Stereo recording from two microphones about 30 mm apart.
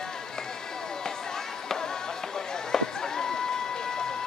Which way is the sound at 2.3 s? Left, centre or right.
Centre.